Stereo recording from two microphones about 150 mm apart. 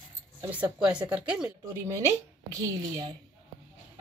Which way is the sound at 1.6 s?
20° right (ahead or behind).